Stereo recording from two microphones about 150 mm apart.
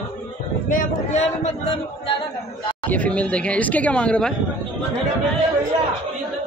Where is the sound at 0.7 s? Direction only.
55° left (ahead or behind).